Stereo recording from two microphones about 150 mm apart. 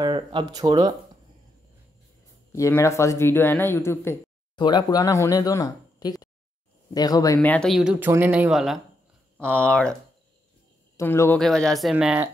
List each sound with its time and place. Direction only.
0.0 s speech: 35° right (ahead or behind)
2.5 s speech: 20° left (ahead or behind)
4.6 s speech: 30° left (ahead or behind)
7.3 s speech: 5° left (ahead or behind)
7.7 s speech: 5° right (ahead or behind)
11.0 s speech: 15° left (ahead or behind)
11.3 s speech: 5° left (ahead or behind)